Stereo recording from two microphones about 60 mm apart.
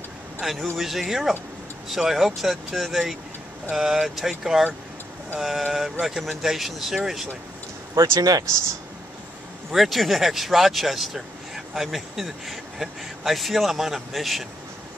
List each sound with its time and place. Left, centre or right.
0.4 s speech: centre
7.9 s speech: right
9.7 s speech: centre